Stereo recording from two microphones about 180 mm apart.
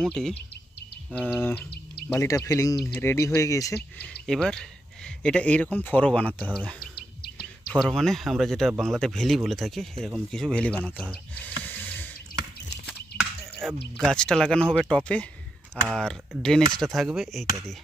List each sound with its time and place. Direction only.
0.0 s speech: 5° left (ahead or behind)
1.4 s speech: 10° left (ahead or behind)
4.3 s speech: 5° left (ahead or behind)
11.6 s a sound: 10° left (ahead or behind)
13.4 s a sound: 10° right (ahead or behind)
14.1 s speech: 5° left (ahead or behind)